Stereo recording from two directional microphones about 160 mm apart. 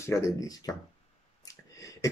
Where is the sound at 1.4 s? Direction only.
20° left (ahead or behind).